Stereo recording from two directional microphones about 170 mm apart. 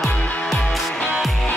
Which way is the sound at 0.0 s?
5° left (ahead or behind).